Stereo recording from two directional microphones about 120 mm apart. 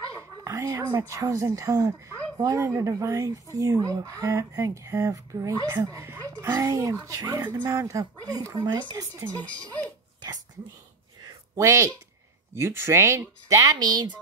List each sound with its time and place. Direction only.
0.2 s speech: 25° right (ahead or behind)
11.2 s a sound: 25° right (ahead or behind)
12.5 s speech: 20° right (ahead or behind)
13.5 s a woman's voice: 35° right (ahead or behind)